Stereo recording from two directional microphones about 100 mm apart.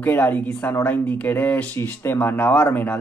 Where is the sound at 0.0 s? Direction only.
20° left (ahead or behind).